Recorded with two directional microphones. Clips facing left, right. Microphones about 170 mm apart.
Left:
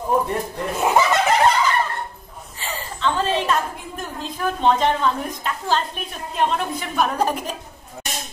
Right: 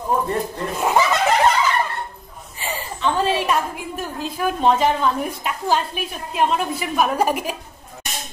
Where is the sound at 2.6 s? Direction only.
15° right (ahead or behind).